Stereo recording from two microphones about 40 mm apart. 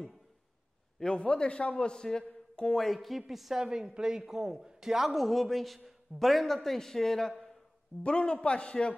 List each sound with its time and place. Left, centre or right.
1.0 s a man's voice: left
2.9 s a man's voice: centre
8.0 s a man's voice: left